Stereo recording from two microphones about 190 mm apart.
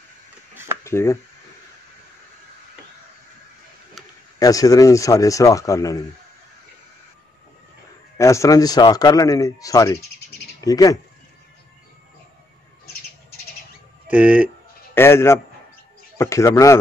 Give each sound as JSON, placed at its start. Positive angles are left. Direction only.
{"t": 0.8, "sound": "speech", "side_deg": 15}
{"t": 4.4, "sound": "speech", "side_deg": 20}
{"t": 8.2, "sound": "speech", "side_deg": 15}
{"t": 14.0, "sound": "speech", "side_deg": -5}
{"t": 15.0, "sound": "speech", "side_deg": 15}